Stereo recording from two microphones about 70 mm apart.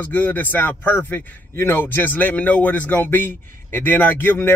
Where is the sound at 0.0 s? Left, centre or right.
Left.